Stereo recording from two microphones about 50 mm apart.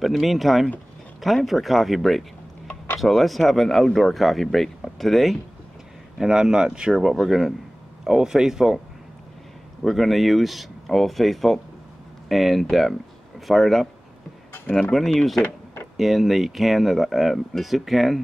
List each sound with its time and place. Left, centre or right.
0.0 s speech: centre
6.1 s a man's voice: centre
9.8 s speech: centre
15.4 s a sound: left
16.0 s speech: centre